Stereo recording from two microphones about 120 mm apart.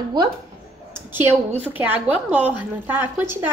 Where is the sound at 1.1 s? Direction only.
20° right (ahead or behind).